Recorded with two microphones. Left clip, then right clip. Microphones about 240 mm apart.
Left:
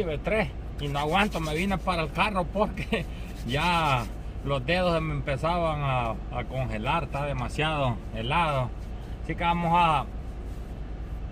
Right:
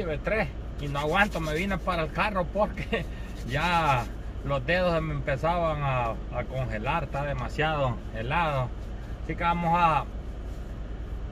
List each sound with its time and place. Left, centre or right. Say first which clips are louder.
0.0 s speech: left 1 dB; centre